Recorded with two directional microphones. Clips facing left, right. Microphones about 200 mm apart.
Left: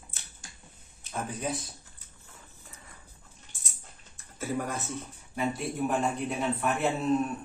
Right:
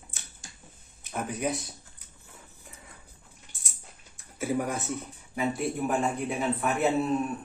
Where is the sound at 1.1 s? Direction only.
15° right (ahead or behind).